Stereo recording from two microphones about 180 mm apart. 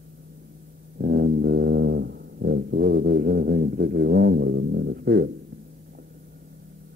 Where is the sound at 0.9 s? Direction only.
60° right (ahead or behind).